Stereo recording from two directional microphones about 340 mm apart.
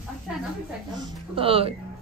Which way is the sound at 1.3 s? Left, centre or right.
Centre.